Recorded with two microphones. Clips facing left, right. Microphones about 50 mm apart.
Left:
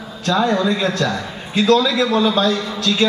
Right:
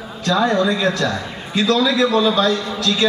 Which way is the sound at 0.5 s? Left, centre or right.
Left.